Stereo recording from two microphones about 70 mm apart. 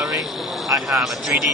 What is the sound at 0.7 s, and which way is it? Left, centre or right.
Speech, right.